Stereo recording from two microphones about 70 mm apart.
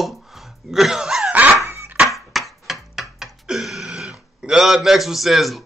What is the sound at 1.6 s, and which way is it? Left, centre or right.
Dog, right.